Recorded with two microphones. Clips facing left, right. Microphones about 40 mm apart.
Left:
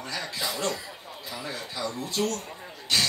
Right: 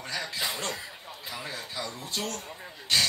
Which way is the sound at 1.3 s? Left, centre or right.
Right.